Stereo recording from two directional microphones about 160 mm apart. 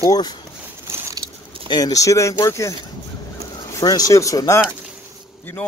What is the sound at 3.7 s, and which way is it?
Speech, 25° left (ahead or behind).